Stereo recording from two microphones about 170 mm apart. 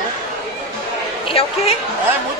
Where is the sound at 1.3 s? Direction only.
35° left (ahead or behind).